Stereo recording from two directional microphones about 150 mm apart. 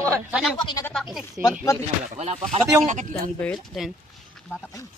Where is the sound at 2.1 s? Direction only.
45° right (ahead or behind).